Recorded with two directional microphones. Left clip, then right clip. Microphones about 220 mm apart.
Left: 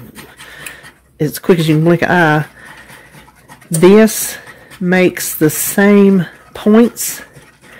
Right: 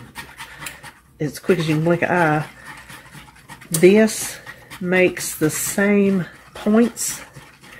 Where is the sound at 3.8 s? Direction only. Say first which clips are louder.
Left 6 dB; 50° left (ahead or behind).